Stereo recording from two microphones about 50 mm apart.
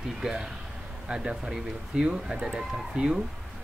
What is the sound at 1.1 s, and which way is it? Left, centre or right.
Speech, centre.